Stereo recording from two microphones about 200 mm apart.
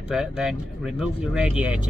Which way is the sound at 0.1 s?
5° right (ahead or behind).